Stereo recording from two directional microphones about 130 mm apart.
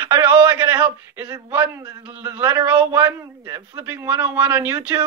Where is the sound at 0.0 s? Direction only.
15° right (ahead or behind).